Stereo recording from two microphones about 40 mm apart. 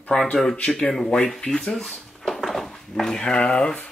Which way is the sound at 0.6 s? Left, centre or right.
Left.